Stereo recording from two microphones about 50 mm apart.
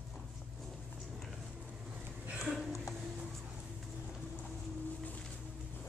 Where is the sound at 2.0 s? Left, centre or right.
Right.